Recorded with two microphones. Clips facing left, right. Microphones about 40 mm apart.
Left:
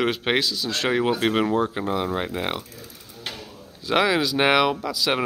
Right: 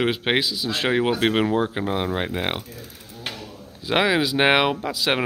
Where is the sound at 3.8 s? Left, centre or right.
Centre.